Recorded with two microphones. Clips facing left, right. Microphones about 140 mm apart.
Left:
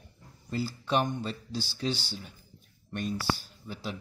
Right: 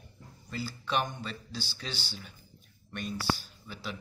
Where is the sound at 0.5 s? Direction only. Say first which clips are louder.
Left 4 dB; 40° left (ahead or behind).